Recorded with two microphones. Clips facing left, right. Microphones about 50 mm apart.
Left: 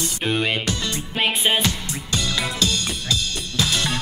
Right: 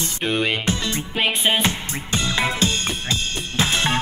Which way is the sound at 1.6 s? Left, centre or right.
Right.